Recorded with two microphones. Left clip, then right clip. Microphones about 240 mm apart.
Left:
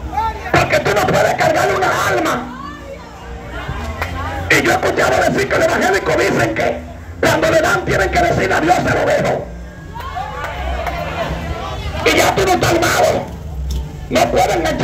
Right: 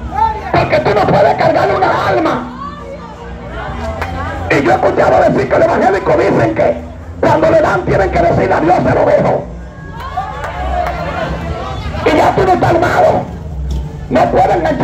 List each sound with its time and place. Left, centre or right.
0.5 s music: left
4.5 s speech: left
12.0 s scratching: left
14.1 s speech: left